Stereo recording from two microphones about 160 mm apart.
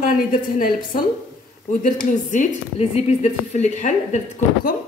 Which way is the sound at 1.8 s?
55° left (ahead or behind).